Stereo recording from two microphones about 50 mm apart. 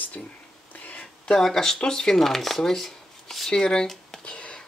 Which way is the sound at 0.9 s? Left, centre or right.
Left.